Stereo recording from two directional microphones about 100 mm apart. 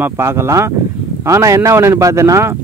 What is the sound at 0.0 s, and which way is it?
Speech, 25° right (ahead or behind).